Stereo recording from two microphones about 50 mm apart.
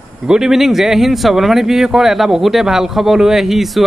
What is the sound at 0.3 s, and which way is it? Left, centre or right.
Speech, centre.